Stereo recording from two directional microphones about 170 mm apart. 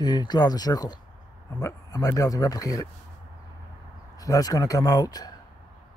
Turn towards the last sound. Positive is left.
turn(degrees=20)  # may be behind; listen again after turning